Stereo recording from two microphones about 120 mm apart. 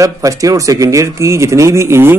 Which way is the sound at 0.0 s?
25° right (ahead or behind).